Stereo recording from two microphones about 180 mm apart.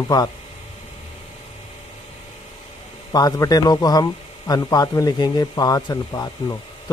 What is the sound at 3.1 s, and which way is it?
Speech, 20° left (ahead or behind).